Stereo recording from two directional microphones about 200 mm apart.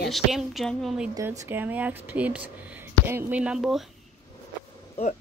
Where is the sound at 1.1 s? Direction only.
10° right (ahead or behind).